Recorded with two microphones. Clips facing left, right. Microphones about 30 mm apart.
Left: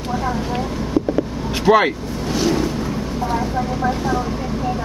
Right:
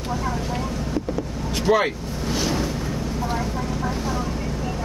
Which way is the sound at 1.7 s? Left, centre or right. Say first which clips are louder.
Left 6 dB; left.